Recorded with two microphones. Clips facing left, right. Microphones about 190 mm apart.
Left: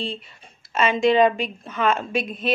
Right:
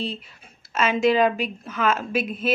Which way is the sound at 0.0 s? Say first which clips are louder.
Even; centre (ahead or behind).